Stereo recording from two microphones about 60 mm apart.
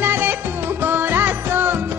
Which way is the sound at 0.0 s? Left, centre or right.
Right.